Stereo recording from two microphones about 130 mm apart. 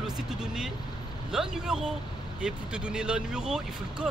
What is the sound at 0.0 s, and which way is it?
Vehicle, 5° right (ahead or behind).